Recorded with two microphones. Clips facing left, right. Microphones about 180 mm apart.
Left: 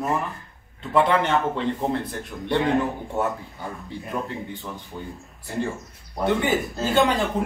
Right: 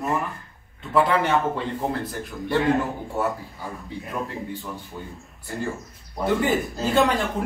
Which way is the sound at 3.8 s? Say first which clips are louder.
Left 1 dB; centre (ahead or behind).